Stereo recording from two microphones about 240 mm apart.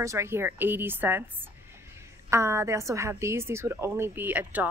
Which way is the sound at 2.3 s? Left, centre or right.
Centre.